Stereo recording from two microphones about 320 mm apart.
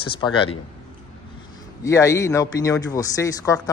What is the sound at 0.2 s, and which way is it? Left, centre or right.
Speech, centre.